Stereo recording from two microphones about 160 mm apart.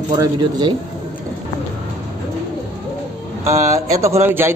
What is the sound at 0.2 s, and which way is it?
Speech, 25° right (ahead or behind).